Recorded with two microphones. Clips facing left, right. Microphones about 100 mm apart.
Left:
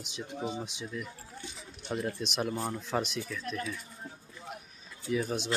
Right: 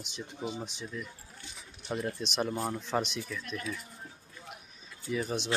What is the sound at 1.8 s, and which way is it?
Speech, centre (ahead or behind).